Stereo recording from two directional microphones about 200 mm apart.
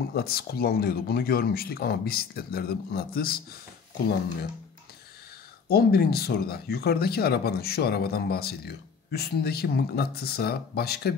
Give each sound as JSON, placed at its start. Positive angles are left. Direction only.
{"t": 0.1, "sound": "speech", "side_deg": 50}
{"t": 5.7, "sound": "speech", "side_deg": 50}